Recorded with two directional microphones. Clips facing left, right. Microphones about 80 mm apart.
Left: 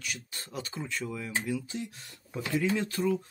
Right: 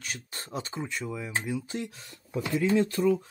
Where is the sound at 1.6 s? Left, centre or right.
Right.